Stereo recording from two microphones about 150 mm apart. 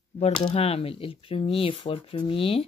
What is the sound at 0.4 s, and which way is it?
Speech, 40° left (ahead or behind).